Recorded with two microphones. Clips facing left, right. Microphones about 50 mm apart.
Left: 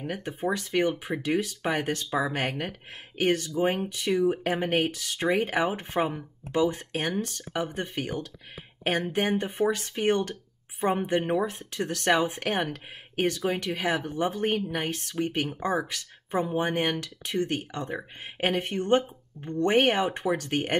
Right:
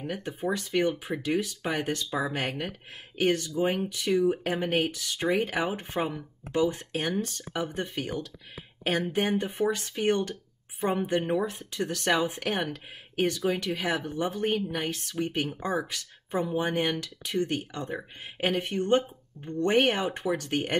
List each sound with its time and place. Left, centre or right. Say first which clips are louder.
0.0 s speech: left 1 dB; left
6.6 s speech: left 1 dB; left
11.0 s speech: left 1 dB; left
11.4 s speech: left 1 dB; left
19.4 s speech: left 2 dB; centre
19.7 s speech: left 1 dB; left